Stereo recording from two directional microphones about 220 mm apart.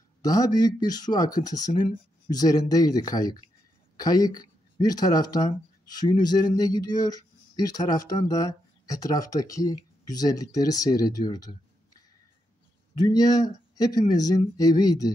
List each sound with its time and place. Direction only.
0.2 s speech: 15° left (ahead or behind)